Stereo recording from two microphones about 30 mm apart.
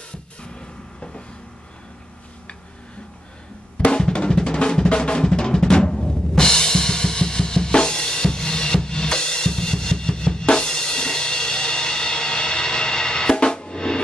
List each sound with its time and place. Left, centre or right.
0.4 s music: left
3.9 s drum: left